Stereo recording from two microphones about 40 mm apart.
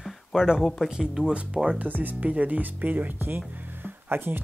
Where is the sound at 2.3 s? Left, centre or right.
Right.